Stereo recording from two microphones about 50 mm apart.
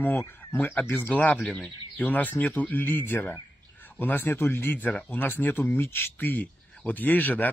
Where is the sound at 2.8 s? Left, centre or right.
Left.